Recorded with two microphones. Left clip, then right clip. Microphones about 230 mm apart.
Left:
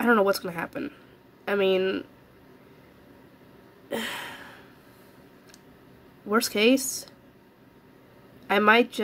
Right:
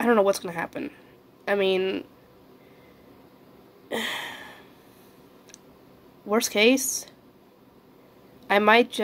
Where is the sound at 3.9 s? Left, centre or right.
Left.